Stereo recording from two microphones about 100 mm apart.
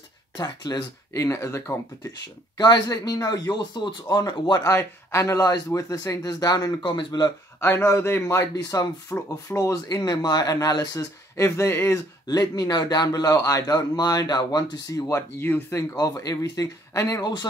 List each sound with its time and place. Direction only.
0.4 s speech: 35° left (ahead or behind)
2.5 s a man's voice: 40° left (ahead or behind)
4.7 s a man's voice: 30° left (ahead or behind); by 7.1 s 50° left (ahead or behind)
7.6 s a man's voice: 25° left (ahead or behind)
12.3 s a man's voice: 40° left (ahead or behind); by 16.0 s 20° left (ahead or behind)
16.0 s a man's voice: 35° left (ahead or behind)